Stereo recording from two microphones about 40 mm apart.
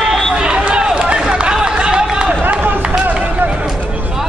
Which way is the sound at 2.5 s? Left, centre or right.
Right.